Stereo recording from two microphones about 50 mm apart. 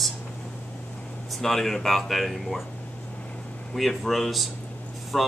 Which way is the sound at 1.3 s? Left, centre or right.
Centre.